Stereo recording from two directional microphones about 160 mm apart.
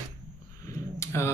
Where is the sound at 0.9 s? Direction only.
15° left (ahead or behind).